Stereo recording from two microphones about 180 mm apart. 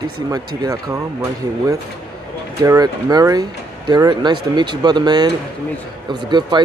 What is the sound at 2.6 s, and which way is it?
Speech, 20° right (ahead or behind).